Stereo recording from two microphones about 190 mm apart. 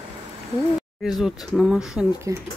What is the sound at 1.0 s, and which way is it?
Speech, 5° right (ahead or behind).